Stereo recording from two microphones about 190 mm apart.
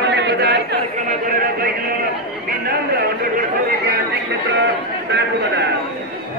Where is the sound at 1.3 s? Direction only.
50° right (ahead or behind).